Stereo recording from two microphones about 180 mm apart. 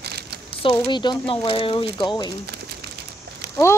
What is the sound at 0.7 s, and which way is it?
Speech, 25° left (ahead or behind).